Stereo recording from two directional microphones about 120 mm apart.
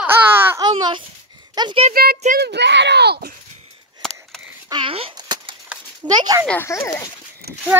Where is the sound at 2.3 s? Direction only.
90° right.